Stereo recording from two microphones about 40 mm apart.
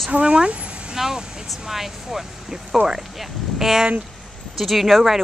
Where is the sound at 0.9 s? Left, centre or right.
Centre.